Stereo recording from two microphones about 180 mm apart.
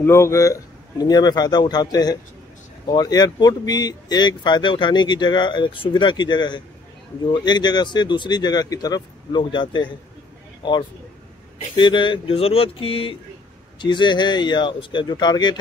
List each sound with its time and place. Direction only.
0.0 s speech: 15° left (ahead or behind)
11.7 s a sound: 25° left (ahead or behind)
13.7 s speech: 25° left (ahead or behind)